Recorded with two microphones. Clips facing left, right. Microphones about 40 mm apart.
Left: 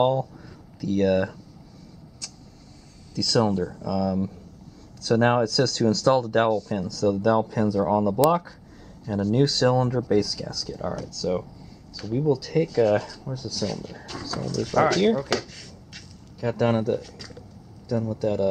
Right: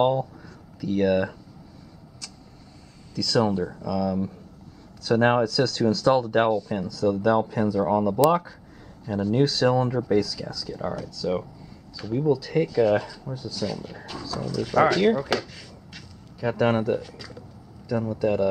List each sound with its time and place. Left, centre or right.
0.0 s speech: centre
2.2 s vehicle: centre
3.2 s speech: centre
13.7 s speech: centre